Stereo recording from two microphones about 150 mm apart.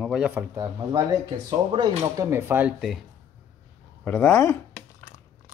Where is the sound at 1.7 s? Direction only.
40° right (ahead or behind).